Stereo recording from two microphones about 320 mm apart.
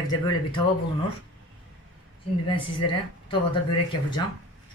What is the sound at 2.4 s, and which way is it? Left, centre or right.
Speech, centre.